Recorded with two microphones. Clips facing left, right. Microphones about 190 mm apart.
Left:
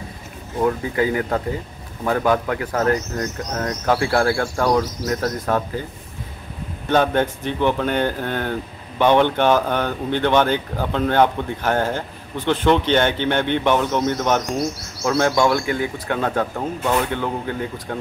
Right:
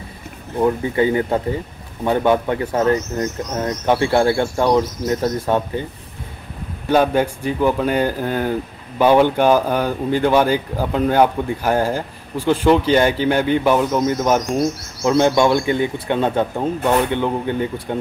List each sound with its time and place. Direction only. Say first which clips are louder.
0.9 s speech: right 3 dB; 25° right (ahead or behind)
6.9 s speech: right 2 dB; 10° right (ahead or behind)
15.0 s speech: right 3 dB; 20° right (ahead or behind)